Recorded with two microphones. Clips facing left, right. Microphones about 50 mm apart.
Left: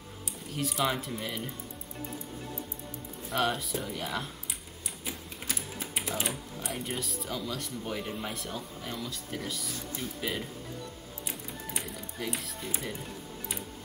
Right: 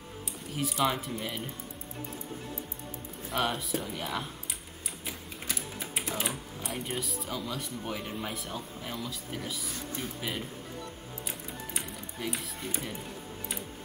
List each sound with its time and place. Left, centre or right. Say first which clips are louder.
0.6 s speech: right 1 dB; centre
3.3 s speech: left 1 dB; centre
5.0 s typing: left 1 dB; centre
6.1 s speech: even; centre
11.2 s speech: left 1 dB; centre